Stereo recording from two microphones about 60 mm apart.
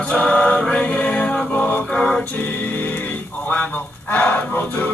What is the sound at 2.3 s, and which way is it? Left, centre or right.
Music, left.